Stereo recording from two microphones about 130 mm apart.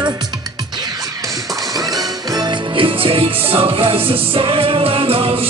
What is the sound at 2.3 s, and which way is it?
Music, 40° right (ahead or behind).